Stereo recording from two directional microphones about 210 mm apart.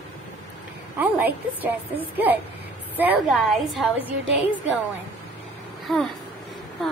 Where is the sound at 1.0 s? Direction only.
10° right (ahead or behind).